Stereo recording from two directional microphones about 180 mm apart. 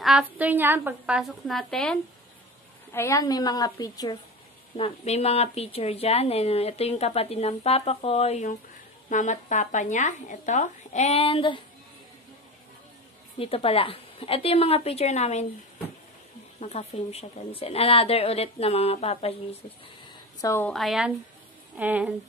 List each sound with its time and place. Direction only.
0.0 s a woman's voice: 5° right (ahead or behind)
2.9 s a woman's voice: 15° left (ahead or behind)
4.7 s speech: 35° left (ahead or behind)
13.4 s speech: 30° left (ahead or behind)
16.5 s speech: 35° left (ahead or behind)
20.3 s a woman's voice: 15° left (ahead or behind)
20.7 s a woman's voice: centre (ahead or behind)